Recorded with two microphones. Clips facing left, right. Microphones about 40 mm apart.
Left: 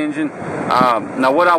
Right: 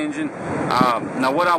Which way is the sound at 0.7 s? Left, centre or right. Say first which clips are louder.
Left 5 dB; left.